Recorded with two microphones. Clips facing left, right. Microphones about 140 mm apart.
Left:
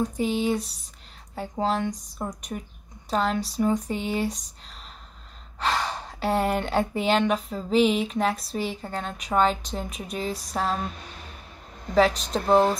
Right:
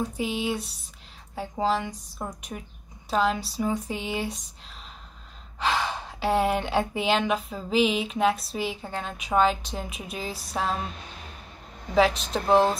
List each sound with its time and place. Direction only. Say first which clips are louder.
0.2 s speech: left 5 dB; 5° right (ahead or behind)
5.7 s speech: even; 5° right (ahead or behind)
11.9 s speech: left 1 dB; 5° right (ahead or behind)